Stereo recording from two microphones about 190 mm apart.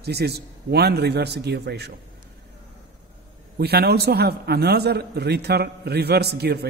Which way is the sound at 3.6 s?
55° right (ahead or behind).